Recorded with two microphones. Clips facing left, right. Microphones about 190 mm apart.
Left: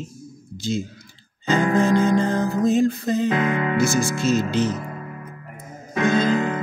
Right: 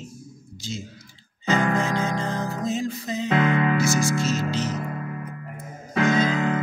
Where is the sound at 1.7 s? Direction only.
55° left (ahead or behind).